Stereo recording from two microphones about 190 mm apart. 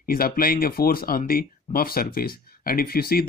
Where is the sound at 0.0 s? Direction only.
50° left (ahead or behind).